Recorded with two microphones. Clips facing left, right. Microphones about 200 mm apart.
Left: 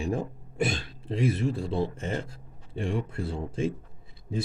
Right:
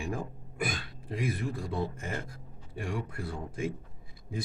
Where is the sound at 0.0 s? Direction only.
30° left (ahead or behind).